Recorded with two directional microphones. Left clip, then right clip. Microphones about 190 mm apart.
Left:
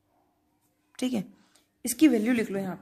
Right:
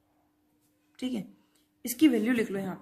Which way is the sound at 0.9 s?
40° left (ahead or behind).